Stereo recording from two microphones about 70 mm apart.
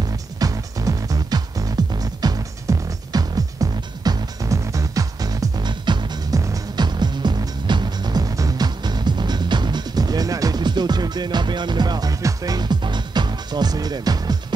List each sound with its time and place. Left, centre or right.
0.4 s music: right
12.5 s music: right